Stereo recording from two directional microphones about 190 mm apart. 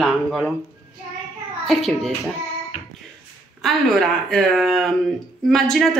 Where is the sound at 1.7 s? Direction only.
Centre (ahead or behind).